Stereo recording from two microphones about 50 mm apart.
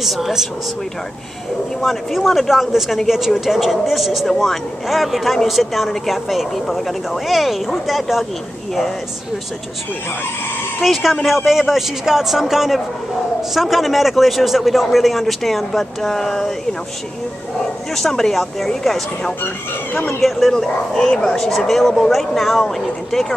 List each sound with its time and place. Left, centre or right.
0.0 s speech: centre
1.8 s speech: centre
10.8 s speech: centre
17.9 s speech: centre
19.4 s speech: left
20.1 s speech: centre